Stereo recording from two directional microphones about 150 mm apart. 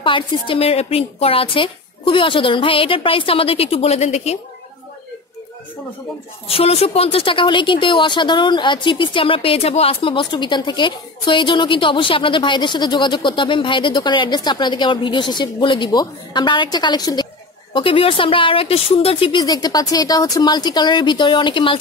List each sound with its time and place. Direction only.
0.0 s a woman's voice: 35° left (ahead or behind)
6.4 s a woman's voice: 40° left (ahead or behind)